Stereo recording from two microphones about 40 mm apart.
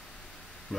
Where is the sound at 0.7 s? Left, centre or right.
Centre.